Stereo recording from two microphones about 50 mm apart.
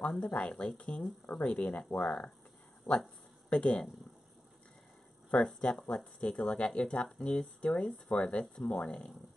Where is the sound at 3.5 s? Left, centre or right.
Left.